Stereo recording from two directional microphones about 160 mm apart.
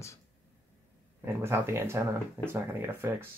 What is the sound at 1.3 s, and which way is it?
Speech, 15° right (ahead or behind).